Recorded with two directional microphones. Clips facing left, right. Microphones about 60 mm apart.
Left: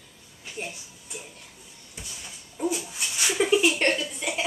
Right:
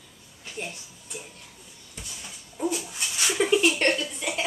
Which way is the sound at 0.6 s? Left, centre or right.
Centre.